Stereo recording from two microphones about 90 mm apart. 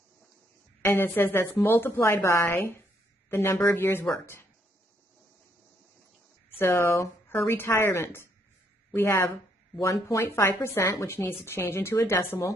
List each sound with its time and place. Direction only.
0.8 s a woman's voice: 25° left (ahead or behind)
6.6 s a woman's voice: 25° left (ahead or behind)
9.8 s a woman's voice: 35° left (ahead or behind)